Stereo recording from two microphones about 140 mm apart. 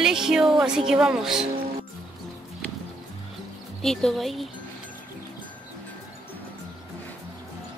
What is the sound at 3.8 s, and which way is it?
Speech, 5° left (ahead or behind).